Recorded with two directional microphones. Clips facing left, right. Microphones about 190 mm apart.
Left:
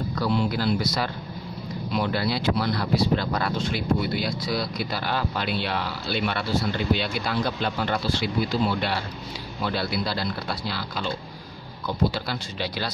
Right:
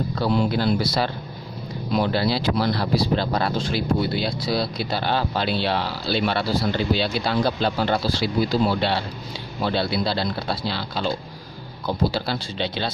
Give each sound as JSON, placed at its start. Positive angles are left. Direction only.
{"t": 0.1, "sound": "speech", "side_deg": -30}